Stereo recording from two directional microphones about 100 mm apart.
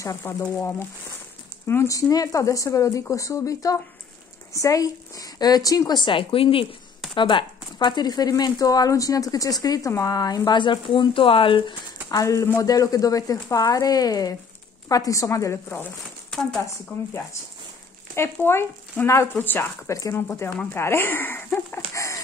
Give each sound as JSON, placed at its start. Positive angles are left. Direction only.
{"t": 0.2, "sound": "speech", "side_deg": 25}
{"t": 7.2, "sound": "speech", "side_deg": 50}
{"t": 12.1, "sound": "speech", "side_deg": 35}
{"t": 16.3, "sound": "speech", "side_deg": 5}
{"t": 16.6, "sound": "speech", "side_deg": 30}
{"t": 19.9, "sound": "speech", "side_deg": 35}
{"t": 21.9, "sound": "a sound", "side_deg": 30}